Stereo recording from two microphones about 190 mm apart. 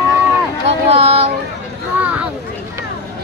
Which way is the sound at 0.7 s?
35° right (ahead or behind).